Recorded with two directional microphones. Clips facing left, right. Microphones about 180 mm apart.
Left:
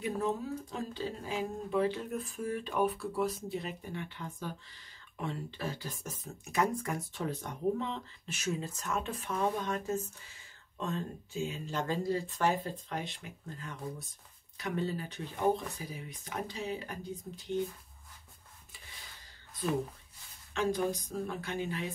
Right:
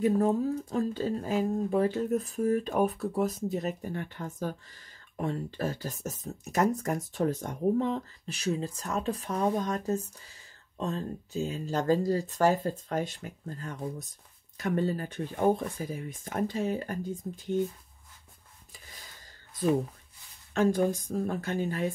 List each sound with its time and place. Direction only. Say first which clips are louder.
0.0 s speech: right 8 dB; 45° right (ahead or behind)
20.5 s speech: right 6 dB; 50° right (ahead or behind)